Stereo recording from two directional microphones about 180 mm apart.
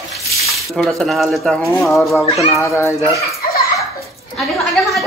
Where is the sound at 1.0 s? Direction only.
Centre (ahead or behind).